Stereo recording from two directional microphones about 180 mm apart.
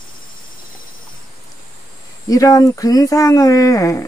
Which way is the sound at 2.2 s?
20° left (ahead or behind).